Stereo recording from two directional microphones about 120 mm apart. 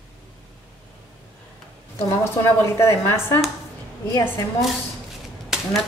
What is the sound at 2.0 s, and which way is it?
A woman's voice, 20° left (ahead or behind).